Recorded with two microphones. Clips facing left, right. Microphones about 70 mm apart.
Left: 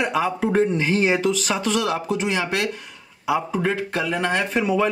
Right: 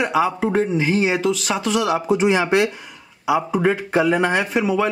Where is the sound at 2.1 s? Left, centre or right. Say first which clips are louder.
Right 6 dB; centre.